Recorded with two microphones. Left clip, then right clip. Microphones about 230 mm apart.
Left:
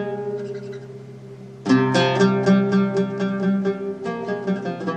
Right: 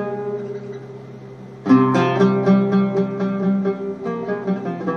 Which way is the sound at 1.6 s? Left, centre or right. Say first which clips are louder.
Right 2 dB; left.